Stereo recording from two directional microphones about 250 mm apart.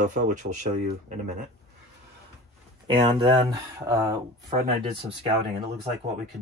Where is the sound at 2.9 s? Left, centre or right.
Centre.